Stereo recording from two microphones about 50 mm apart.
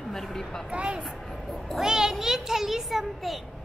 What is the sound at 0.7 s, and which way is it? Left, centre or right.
Speech, right.